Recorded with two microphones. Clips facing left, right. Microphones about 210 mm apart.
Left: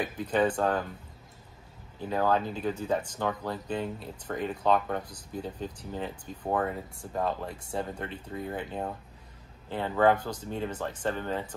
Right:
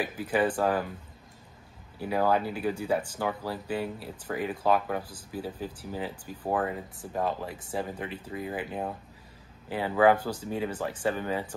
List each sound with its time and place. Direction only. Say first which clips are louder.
0.0 s speech: even; 5° right (ahead or behind)
2.0 s speech: right 1 dB; 10° right (ahead or behind)